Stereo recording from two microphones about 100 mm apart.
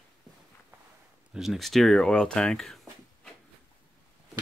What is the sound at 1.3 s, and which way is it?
Speech, centre (ahead or behind).